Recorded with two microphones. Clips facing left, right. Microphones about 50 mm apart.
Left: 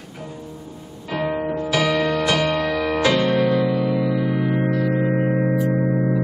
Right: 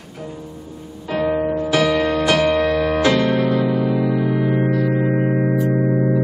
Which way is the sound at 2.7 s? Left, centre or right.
Centre.